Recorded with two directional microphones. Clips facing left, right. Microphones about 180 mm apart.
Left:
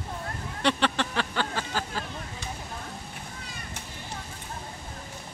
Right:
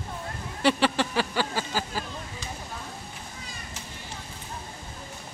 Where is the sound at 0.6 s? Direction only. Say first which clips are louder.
Right 3 dB; 5° right (ahead or behind).